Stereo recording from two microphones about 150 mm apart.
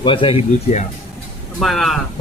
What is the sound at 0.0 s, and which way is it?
Speech, 35° left (ahead or behind).